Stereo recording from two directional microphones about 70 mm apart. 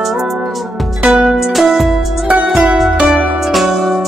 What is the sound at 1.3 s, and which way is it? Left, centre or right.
Music, centre.